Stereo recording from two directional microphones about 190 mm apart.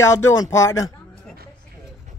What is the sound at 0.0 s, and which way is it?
Speech, 15° left (ahead or behind).